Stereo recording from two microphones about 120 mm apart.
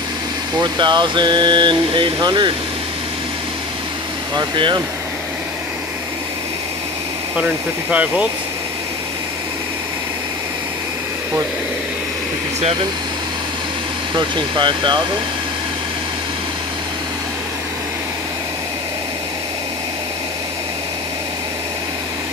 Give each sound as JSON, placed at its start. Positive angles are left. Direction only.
{"t": 0.6, "sound": "speech", "side_deg": -40}
{"t": 4.4, "sound": "speech", "side_deg": -40}
{"t": 7.3, "sound": "speech", "side_deg": -10}
{"t": 14.1, "sound": "speech", "side_deg": -45}